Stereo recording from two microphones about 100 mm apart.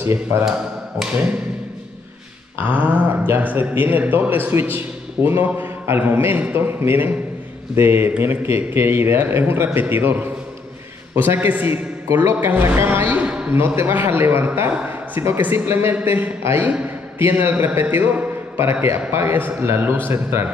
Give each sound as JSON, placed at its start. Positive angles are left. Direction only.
{"t": 0.0, "sound": "a man's voice", "side_deg": -25}
{"t": 0.5, "sound": "speech", "side_deg": -5}
{"t": 2.5, "sound": "a man's voice", "side_deg": -15}